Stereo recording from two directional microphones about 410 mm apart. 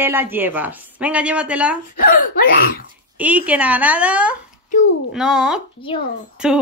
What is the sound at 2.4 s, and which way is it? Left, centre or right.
Speech, left.